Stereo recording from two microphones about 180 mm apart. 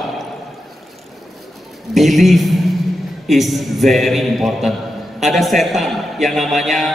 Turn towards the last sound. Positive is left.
turn(degrees=0)  # may be behind; listen again after turning